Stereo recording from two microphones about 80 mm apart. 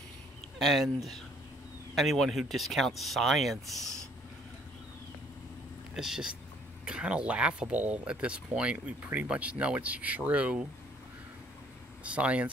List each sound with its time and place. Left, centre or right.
0.6 s speech: centre
5.9 s speech: centre
12.0 s speech: centre